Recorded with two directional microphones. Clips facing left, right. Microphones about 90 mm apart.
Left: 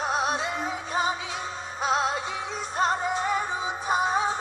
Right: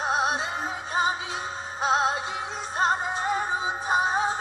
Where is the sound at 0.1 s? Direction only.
25° right (ahead or behind).